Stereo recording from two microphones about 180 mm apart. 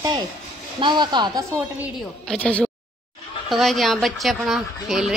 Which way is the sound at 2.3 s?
5° left (ahead or behind).